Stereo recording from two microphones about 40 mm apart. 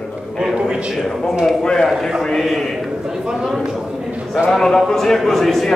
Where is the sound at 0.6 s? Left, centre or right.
Right.